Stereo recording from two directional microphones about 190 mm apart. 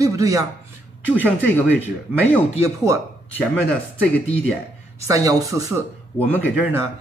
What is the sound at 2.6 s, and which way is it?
Speech, 15° right (ahead or behind).